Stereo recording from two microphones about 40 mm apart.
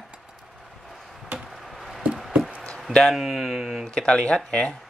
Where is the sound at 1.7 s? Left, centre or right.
Centre.